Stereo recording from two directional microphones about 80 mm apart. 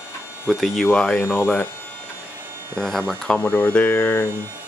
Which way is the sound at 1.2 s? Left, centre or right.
Left.